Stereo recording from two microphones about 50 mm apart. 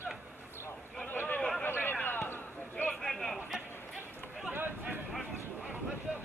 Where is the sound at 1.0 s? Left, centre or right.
Left.